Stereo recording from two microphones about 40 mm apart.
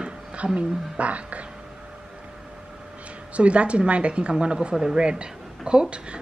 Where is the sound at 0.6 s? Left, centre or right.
Right.